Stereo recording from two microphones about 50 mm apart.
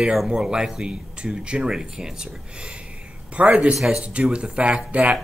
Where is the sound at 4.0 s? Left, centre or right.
Right.